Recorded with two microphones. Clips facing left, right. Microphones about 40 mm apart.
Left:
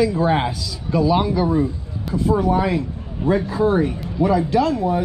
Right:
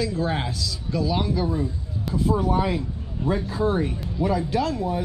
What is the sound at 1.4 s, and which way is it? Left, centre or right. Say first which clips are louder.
Speech: left 7 dB; left.